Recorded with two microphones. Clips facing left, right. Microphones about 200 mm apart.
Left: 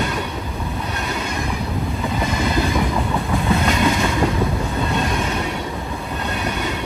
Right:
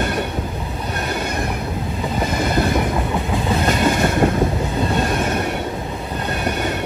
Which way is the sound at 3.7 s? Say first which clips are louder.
Right 1 dB; 55° right (ahead or behind).